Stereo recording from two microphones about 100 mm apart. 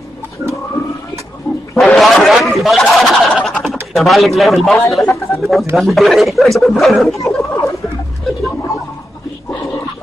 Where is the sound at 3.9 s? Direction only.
Centre (ahead or behind).